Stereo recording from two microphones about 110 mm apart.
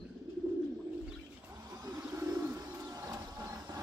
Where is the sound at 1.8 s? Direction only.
25° right (ahead or behind).